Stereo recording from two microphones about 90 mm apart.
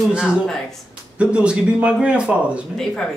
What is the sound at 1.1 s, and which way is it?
A man's voice, 10° right (ahead or behind).